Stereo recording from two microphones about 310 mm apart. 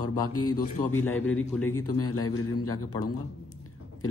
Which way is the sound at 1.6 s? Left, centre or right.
Left.